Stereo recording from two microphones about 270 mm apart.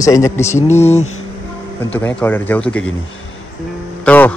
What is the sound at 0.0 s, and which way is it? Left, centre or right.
Speech, centre.